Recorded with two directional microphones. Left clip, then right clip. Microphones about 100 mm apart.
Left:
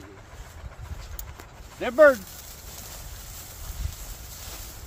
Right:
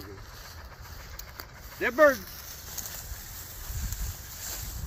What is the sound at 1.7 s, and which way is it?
Speech, 55° left (ahead or behind).